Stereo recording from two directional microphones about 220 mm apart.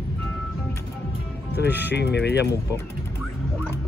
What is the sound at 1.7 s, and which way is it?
Speech, 10° right (ahead or behind).